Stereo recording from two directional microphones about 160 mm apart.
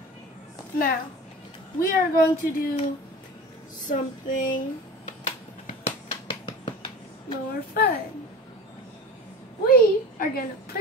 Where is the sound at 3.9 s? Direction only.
55° left (ahead or behind).